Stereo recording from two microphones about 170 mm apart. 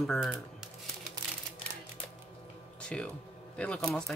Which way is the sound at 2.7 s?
5° left (ahead or behind).